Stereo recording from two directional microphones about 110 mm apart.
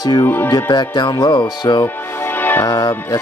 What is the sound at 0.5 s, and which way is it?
Speech, 40° left (ahead or behind).